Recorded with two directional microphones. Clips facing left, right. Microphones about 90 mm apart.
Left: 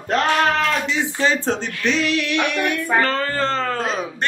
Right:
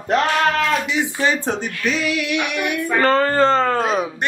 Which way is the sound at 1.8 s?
5° right (ahead or behind).